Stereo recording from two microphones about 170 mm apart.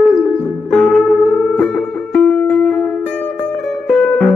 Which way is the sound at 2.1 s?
5° left (ahead or behind).